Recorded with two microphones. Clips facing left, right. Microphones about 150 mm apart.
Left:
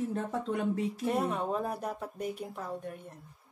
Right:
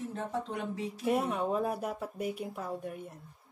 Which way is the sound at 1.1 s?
5° right (ahead or behind).